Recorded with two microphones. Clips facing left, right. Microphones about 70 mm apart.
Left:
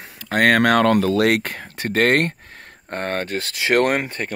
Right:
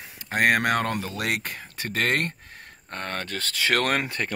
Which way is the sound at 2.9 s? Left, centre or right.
Left.